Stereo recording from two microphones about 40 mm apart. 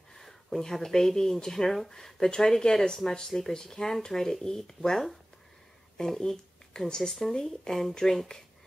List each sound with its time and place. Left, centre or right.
0.1 s speech: centre